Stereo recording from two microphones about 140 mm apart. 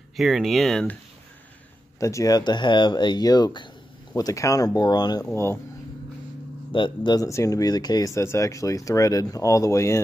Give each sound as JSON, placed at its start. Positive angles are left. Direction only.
{"t": 0.1, "sound": "speech", "side_deg": 0}
{"t": 2.0, "sound": "speech", "side_deg": 20}
{"t": 5.3, "sound": "speech", "side_deg": 20}
{"t": 6.7, "sound": "speech", "side_deg": 35}
{"t": 7.2, "sound": "speech", "side_deg": 20}